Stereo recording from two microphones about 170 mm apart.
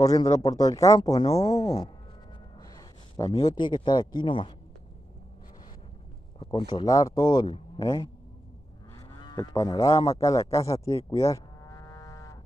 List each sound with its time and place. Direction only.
0.0 s speech: 20° left (ahead or behind)
6.4 s speech: 30° left (ahead or behind)
8.9 s goose: 25° left (ahead or behind)
10.2 s speech: 20° left (ahead or behind)
11.1 s cattle: 20° left (ahead or behind)